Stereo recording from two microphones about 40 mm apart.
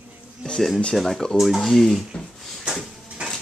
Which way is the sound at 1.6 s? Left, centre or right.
Centre.